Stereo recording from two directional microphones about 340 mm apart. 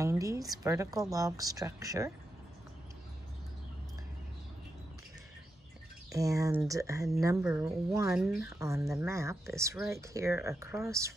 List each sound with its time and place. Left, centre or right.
0.0 s speech: centre
6.1 s speech: centre